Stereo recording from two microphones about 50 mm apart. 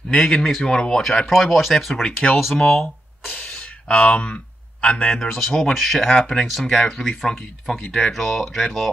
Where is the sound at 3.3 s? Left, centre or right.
Left.